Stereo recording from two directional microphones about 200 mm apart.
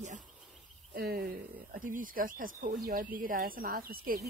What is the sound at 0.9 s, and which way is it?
Speech, 50° right (ahead or behind).